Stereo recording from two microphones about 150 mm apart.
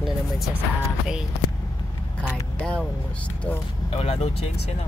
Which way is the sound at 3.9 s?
40° left (ahead or behind).